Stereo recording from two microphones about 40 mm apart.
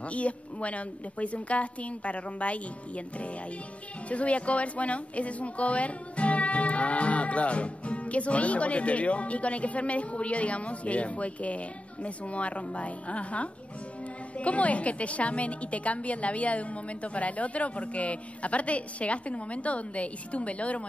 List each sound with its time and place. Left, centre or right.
0.1 s speech: left
4.1 s speech: left